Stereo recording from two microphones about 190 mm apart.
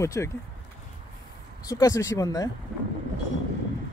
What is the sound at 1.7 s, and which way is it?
Speech, 15° left (ahead or behind).